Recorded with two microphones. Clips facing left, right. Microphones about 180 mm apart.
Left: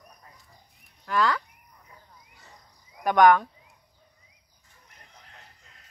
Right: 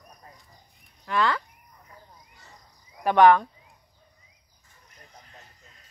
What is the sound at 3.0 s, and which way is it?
Speech, centre (ahead or behind).